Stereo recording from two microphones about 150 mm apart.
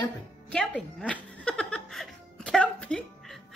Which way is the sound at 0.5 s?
5° left (ahead or behind).